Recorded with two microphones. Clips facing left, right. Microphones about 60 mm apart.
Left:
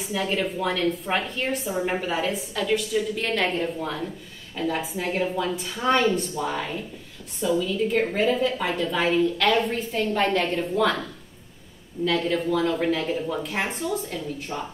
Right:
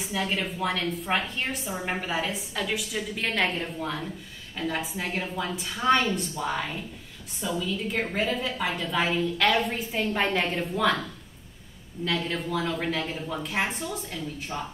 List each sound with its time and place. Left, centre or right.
0.0 s a woman's voice: centre
7.3 s a woman's voice: centre
12.0 s a woman's voice: centre